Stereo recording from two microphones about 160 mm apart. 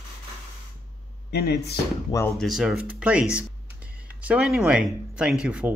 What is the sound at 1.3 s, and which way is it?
Speech, 85° left.